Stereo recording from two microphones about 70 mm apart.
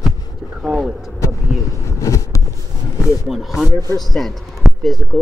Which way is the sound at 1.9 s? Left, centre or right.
Left.